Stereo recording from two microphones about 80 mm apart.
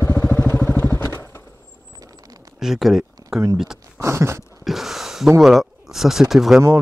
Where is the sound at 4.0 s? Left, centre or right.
Right.